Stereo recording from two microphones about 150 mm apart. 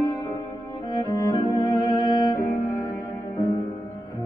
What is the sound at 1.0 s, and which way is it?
Music, 30° left (ahead or behind).